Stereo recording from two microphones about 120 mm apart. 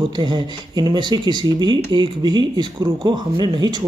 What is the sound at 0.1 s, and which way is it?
Speech, 40° right (ahead or behind).